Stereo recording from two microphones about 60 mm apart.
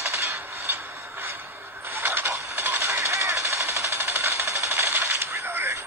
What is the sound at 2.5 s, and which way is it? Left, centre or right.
Coin, right.